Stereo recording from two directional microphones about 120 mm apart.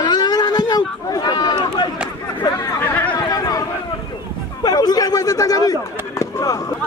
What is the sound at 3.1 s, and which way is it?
Chatter, 30° left (ahead or behind).